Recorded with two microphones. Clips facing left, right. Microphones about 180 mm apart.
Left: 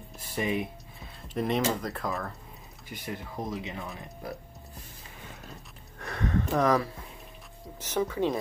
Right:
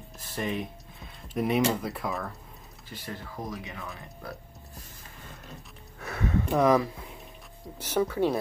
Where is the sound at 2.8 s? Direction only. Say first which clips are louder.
Left 2 dB; 15° left (ahead or behind).